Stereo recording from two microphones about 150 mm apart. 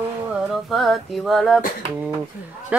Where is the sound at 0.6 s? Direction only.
Centre (ahead or behind).